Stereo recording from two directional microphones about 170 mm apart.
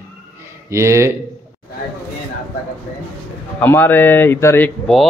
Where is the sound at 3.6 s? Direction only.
15° left (ahead or behind).